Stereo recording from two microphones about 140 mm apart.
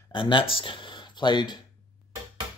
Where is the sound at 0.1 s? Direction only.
35° left (ahead or behind).